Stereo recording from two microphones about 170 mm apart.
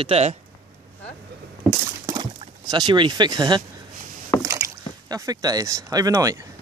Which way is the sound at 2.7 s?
25° right (ahead or behind).